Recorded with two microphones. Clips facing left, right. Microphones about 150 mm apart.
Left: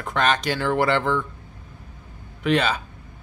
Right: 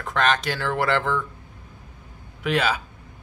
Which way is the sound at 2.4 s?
5° right (ahead or behind).